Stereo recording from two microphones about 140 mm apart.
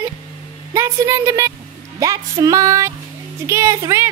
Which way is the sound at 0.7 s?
20° right (ahead or behind).